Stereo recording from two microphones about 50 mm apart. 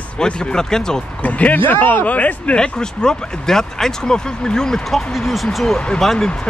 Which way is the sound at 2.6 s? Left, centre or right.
Centre.